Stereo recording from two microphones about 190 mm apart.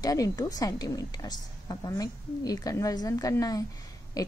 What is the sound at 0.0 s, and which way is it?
A woman's voice, 20° left (ahead or behind).